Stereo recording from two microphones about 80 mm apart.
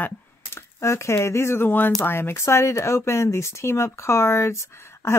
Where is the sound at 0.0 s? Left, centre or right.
Left.